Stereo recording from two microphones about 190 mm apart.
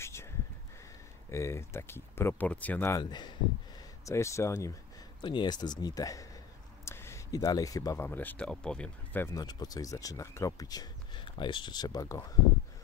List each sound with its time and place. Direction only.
0.0 s a sound: 15° left (ahead or behind)
1.3 s speech: 15° left (ahead or behind)
3.0 s speech: 25° left (ahead or behind)